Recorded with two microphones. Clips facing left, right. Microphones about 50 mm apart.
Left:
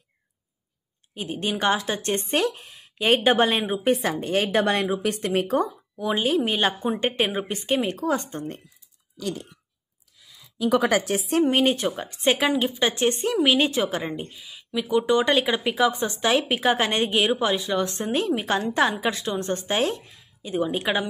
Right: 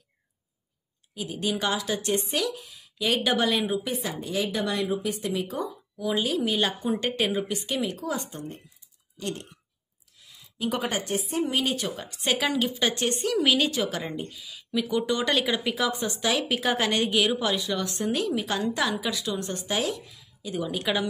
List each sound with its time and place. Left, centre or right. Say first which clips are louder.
1.1 s speech: left 1 dB; left
3.9 s speech: left 7 dB; left
11.1 s a woman's voice: left 5 dB; left
11.4 s a woman's voice: left 6 dB; left